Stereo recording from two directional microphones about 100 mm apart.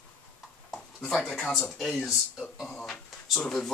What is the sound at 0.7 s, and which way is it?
Speech, centre (ahead or behind).